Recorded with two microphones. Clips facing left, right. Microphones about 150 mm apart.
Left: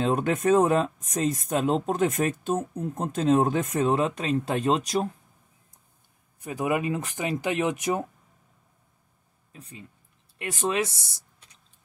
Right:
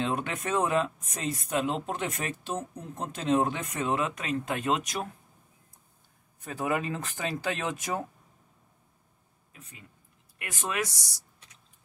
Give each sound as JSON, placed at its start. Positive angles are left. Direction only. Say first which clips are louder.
{"t": 0.0, "sound": "speech", "louder": "left 7 dB", "side_deg": 45}
{"t": 6.4, "sound": "speech", "louder": "left 4 dB", "side_deg": 15}
{"t": 9.5, "sound": "speech", "louder": "left 7 dB", "side_deg": 30}